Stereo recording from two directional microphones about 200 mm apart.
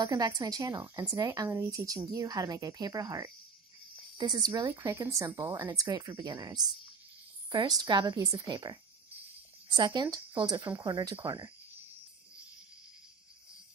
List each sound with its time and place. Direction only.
0.0 s speech: 20° right (ahead or behind)